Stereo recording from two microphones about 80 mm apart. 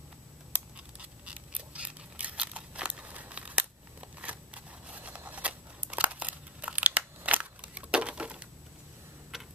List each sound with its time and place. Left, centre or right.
0.5 s scissors: centre
9.3 s tick-tock: centre